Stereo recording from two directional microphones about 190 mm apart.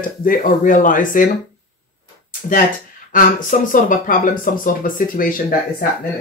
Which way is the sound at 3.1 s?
45° left (ahead or behind).